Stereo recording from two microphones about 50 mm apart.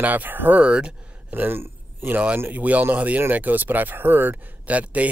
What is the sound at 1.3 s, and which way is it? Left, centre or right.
Speech, right.